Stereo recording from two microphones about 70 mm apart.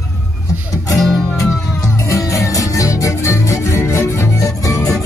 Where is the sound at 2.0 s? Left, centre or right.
Left.